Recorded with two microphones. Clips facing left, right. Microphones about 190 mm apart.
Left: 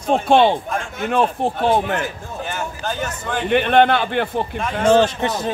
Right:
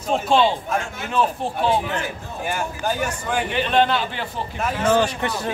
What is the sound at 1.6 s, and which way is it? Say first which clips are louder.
Speech: left 3 dB; 55° left (ahead or behind).